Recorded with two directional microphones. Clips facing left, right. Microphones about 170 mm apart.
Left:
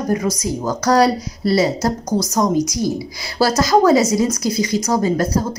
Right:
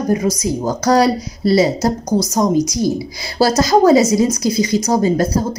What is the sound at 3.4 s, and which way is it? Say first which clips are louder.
Speech: right 2 dB; 25° right (ahead or behind).